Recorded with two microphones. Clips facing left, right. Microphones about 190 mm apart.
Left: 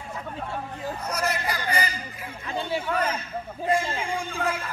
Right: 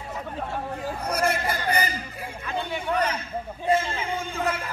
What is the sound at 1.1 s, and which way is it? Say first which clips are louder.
Speech: right 4 dB; 55° right (ahead or behind).